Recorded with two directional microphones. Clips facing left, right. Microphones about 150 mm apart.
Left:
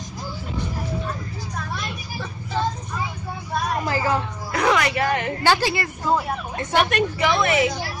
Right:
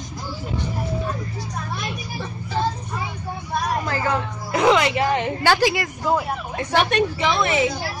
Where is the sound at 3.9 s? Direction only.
5° left (ahead or behind).